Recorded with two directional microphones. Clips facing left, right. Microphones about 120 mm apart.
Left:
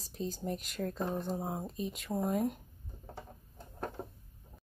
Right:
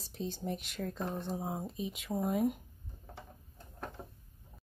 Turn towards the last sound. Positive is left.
turn(degrees=25)  # may be behind; listen again after turning